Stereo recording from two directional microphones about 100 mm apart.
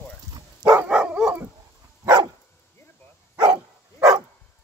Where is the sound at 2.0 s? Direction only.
40° right (ahead or behind).